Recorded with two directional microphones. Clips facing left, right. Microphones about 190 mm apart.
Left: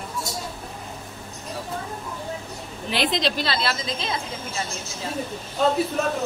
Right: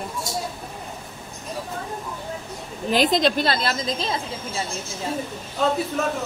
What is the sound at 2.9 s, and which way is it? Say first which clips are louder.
A woman's voice: right 5 dB; 45° right (ahead or behind).